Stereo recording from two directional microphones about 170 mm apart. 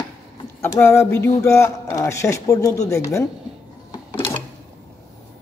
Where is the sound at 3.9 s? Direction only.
20° left (ahead or behind).